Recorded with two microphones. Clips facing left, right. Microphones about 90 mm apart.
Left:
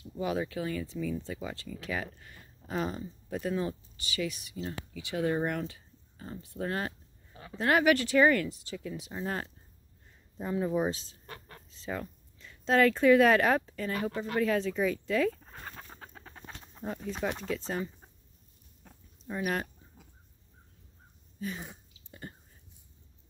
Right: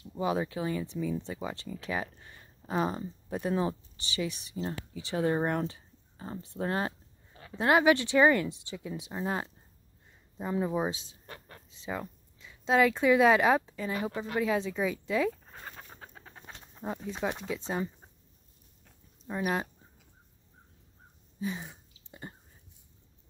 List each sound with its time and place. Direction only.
0.1 s speech: 25° right (ahead or behind)
2.1 s a sound: 25° right (ahead or behind)
2.9 s speech: 35° right (ahead or behind); by 9.5 s 15° right (ahead or behind)
10.6 s speech: 15° right (ahead or behind)
15.6 s bird: 10° right (ahead or behind)
16.8 s speech: 15° right (ahead or behind)
19.2 s speech: 10° right (ahead or behind)
21.4 s speech: 20° right (ahead or behind)